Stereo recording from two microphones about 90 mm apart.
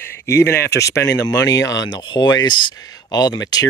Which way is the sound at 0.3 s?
30° left (ahead or behind).